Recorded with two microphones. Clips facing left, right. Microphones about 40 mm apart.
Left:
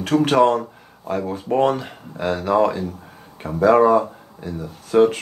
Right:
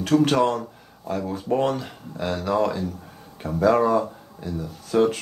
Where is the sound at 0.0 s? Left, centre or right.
Centre.